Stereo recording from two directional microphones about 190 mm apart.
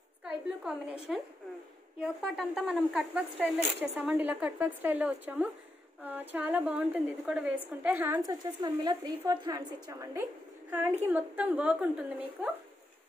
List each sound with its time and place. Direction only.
0.2 s a woman's voice: 5° right (ahead or behind)
2.0 s speech: 5° right (ahead or behind)
8.3 s a woman's voice: 20° right (ahead or behind)